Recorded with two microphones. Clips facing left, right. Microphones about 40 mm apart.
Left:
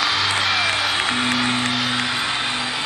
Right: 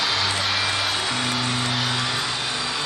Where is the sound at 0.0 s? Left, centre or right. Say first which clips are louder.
Left 3 dB; centre.